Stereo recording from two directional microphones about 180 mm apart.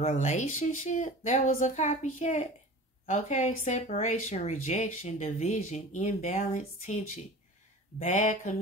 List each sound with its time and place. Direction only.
0.0 s speech: 40° left (ahead or behind)